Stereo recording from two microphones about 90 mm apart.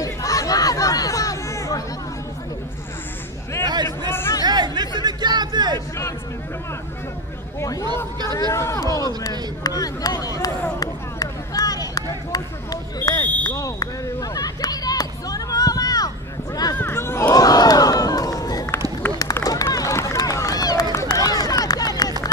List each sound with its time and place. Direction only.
0.0 s chatter: 40° left (ahead or behind)
3.6 s a sound: 50° right (ahead or behind)
4.1 s chatter: 25° left (ahead or behind)
4.4 s chatter: 50° right (ahead or behind)
8.5 s speech: 30° left (ahead or behind)
9.6 s a sound: 45° left (ahead or behind)
16.7 s a sound: 25° left (ahead or behind)
17.4 s crowd: 45° left (ahead or behind)
19.0 s run: 20° left (ahead or behind)
19.4 s run: 40° left (ahead or behind)